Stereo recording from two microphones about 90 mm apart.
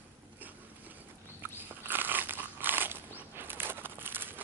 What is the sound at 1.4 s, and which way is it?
Biting, 20° right (ahead or behind).